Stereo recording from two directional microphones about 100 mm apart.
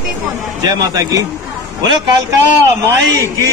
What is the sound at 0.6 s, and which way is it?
A man's voice, 40° right (ahead or behind).